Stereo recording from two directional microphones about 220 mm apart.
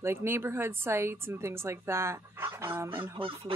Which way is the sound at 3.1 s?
25° right (ahead or behind).